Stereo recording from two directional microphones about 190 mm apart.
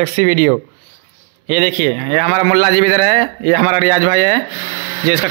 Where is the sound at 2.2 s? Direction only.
45° right (ahead or behind).